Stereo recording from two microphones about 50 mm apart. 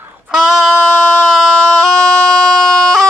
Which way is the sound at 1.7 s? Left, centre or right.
Centre.